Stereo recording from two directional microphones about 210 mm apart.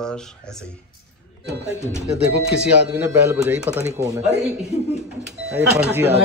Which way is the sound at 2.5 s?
5° right (ahead or behind).